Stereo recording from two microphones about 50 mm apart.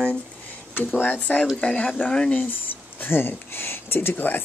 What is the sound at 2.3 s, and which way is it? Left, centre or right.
Speech, left.